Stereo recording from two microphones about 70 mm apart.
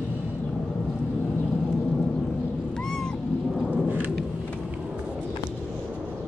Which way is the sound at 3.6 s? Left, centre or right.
Right.